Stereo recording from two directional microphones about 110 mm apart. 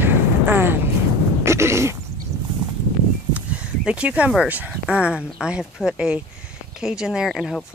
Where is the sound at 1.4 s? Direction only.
25° right (ahead or behind).